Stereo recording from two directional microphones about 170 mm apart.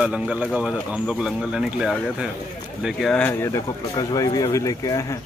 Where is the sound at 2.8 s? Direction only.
Centre (ahead or behind).